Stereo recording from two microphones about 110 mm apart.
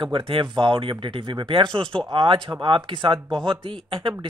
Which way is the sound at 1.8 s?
5° left (ahead or behind).